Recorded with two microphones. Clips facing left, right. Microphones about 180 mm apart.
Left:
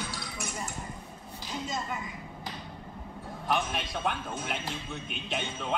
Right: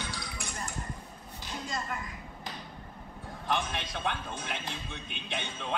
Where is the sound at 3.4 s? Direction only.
Centre (ahead or behind).